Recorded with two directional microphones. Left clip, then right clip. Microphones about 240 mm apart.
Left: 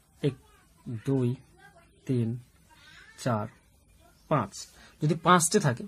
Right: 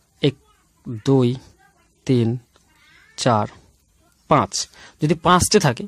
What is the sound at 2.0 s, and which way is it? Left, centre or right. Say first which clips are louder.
A man's voice: right 12 dB; right.